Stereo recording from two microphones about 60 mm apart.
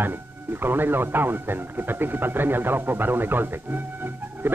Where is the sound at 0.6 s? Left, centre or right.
Right.